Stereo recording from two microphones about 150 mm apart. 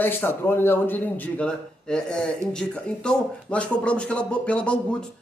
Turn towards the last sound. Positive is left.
turn(degrees=5)  # may be behind; listen again after turning